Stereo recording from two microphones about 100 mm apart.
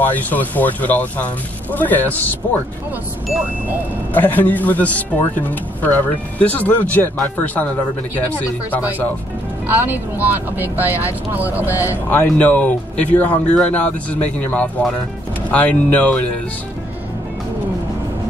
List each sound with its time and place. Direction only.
0.0 s speech: 15° left (ahead or behind)
4.1 s speech: 20° left (ahead or behind)
9.8 s speech: 20° right (ahead or behind)
11.8 s speech: 25° left (ahead or behind)